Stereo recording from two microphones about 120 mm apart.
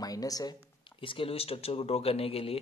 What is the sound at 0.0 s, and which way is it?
Speech, 30° left (ahead or behind).